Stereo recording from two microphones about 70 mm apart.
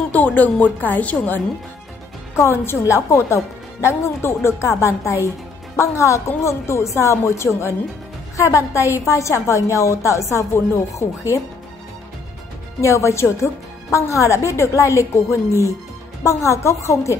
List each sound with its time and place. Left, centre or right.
0.1 s a woman's voice: left
2.3 s a woman's voice: left
12.8 s a woman's voice: left